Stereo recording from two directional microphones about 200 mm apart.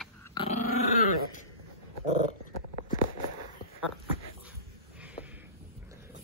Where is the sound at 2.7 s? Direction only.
35° left (ahead or behind).